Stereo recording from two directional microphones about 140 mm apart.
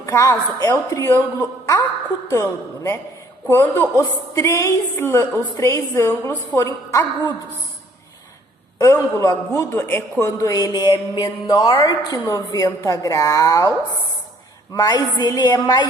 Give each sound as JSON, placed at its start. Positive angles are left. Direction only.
{"t": 0.0, "sound": "a woman's voice", "side_deg": 20}
{"t": 2.2, "sound": "a woman's voice", "side_deg": 20}
{"t": 8.7, "sound": "a woman's voice", "side_deg": 20}